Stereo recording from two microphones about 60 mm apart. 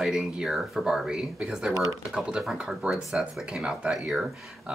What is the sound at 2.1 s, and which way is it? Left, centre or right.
Speech, centre.